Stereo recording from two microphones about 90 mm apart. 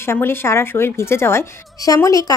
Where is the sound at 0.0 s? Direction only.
25° left (ahead or behind).